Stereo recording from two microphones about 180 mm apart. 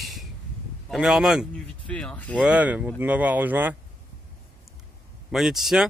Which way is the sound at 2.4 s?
5° right (ahead or behind).